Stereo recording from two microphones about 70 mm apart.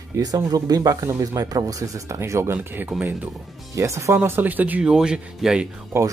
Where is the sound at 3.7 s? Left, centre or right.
Right.